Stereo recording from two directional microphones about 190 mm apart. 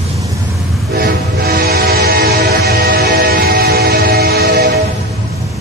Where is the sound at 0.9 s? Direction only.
55° right (ahead or behind).